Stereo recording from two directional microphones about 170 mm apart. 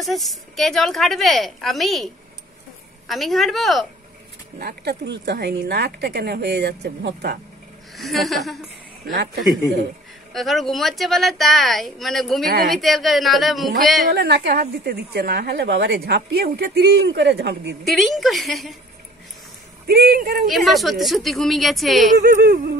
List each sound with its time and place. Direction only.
0.0 s speech: centre (ahead or behind)
3.1 s speech: centre (ahead or behind)
4.6 s a woman's voice: 70° right (ahead or behind)
7.9 s speech: centre (ahead or behind)
9.1 s a woman's voice: 75° right (ahead or behind)
10.3 s speech: centre (ahead or behind)
14.1 s a woman's voice: 75° right (ahead or behind)
17.8 s speech: centre (ahead or behind)
19.9 s a woman's voice: 65° right (ahead or behind)
20.4 s speech: centre (ahead or behind)
22.2 s a sound: 65° right (ahead or behind)